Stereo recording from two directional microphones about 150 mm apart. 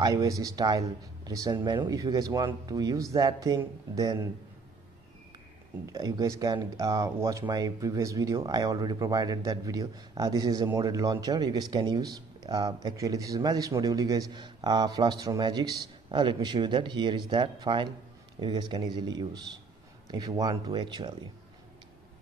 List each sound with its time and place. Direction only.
0.0 s speech: 20° right (ahead or behind)
5.9 s speech: 25° right (ahead or behind)